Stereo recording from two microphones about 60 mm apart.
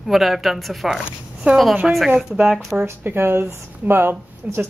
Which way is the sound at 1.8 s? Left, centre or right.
Centre.